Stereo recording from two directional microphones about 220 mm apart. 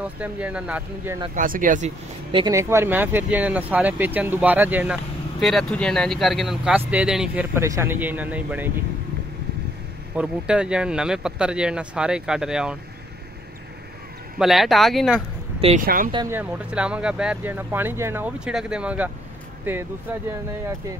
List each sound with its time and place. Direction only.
0.0 s speech: 5° right (ahead or behind)
1.3 s speech: 40° right (ahead or behind)
2.3 s speech: 15° right (ahead or behind)
10.1 s speech: 5° right (ahead or behind)
14.4 s speech: centre (ahead or behind)
15.6 s speech: 35° right (ahead or behind)
16.1 s speech: 20° right (ahead or behind)
16.3 s speech: 5° right (ahead or behind)